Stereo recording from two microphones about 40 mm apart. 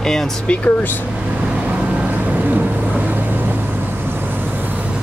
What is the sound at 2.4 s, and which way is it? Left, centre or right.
Vehicle, right.